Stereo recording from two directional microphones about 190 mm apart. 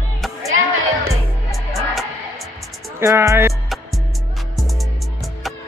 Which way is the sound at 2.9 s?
15° right (ahead or behind).